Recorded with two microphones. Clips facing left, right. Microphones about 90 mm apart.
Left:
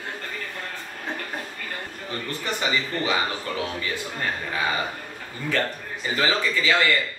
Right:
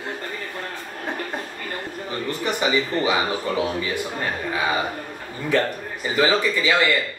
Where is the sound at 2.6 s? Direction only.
15° right (ahead or behind).